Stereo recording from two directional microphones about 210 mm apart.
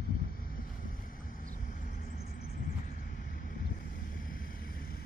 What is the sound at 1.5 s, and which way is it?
Vehicle, 40° left (ahead or behind).